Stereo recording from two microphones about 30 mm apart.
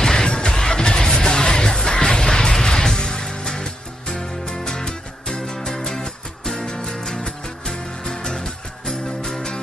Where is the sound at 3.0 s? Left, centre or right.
Left.